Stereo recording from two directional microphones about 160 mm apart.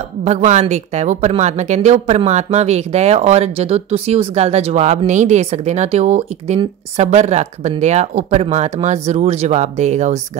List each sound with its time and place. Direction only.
0.2 s a woman's voice: 45° right (ahead or behind)